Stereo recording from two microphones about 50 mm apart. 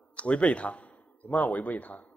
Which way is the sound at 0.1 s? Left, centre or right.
Left.